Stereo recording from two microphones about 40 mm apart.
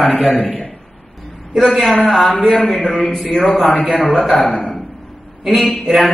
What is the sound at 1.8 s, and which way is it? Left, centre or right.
A man's voice, centre.